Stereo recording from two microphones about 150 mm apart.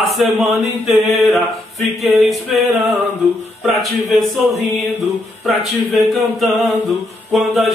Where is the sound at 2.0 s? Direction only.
Centre (ahead or behind).